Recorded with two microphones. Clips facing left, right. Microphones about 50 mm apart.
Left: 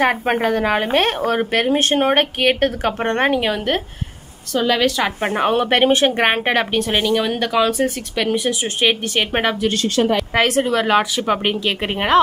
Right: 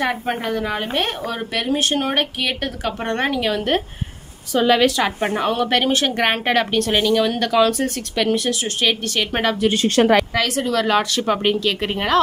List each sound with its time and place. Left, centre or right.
0.0 s speech: left
4.6 s a woman's voice: centre
5.2 s speech: left; by 8.5 s centre
8.8 s speech: left
10.3 s speech: left
10.7 s speech: centre